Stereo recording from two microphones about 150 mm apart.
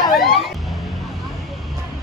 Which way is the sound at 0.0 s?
Centre (ahead or behind).